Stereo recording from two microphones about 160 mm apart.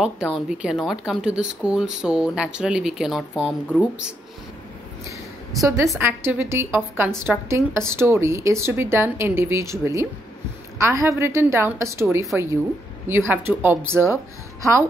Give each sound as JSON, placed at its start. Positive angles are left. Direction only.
{"t": 0.0, "sound": "speech", "side_deg": -5}
{"t": 5.9, "sound": "a woman's voice", "side_deg": -15}